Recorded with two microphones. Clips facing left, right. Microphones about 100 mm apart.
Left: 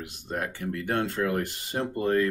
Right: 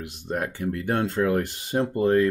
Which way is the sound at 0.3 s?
25° right (ahead or behind).